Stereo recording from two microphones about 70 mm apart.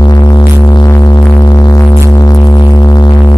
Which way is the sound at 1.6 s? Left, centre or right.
Left.